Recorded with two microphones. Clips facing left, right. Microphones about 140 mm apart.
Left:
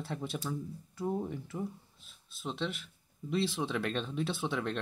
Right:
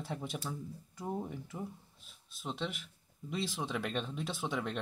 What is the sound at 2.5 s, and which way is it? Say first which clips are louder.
Speech: left 2 dB; 15° right (ahead or behind).